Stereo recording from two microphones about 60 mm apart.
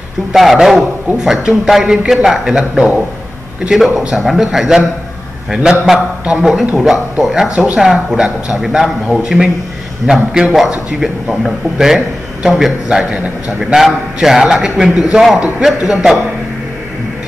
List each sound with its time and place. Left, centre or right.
0.3 s a man's voice: centre
6.9 s a man's voice: centre
7.5 s speech: right
7.8 s a man's voice: centre